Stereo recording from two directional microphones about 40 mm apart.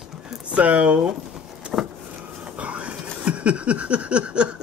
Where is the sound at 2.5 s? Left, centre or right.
Right.